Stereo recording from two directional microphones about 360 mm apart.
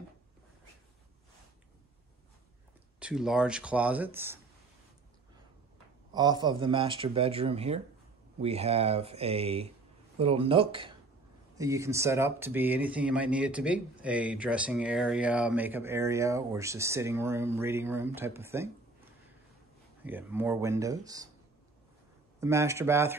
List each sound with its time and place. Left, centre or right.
3.0 s speech: centre
6.1 s speech: centre
20.0 s speech: centre
22.4 s speech: centre